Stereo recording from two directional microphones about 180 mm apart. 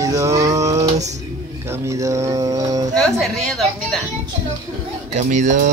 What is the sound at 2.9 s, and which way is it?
A woman's voice, 5° left (ahead or behind).